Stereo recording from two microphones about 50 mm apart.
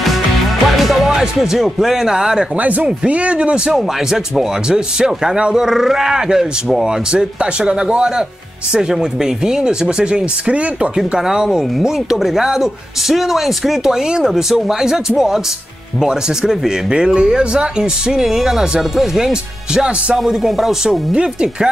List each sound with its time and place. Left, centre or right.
0.7 s music: centre
1.4 s speech: centre
2.6 s speech: right
3.7 s speech: centre
20.2 s speech: centre
21.1 s speech: centre